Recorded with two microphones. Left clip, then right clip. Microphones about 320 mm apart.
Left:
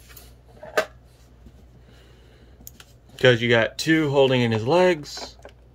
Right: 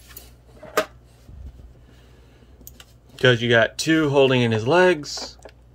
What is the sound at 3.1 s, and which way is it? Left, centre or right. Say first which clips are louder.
Speech: even; centre.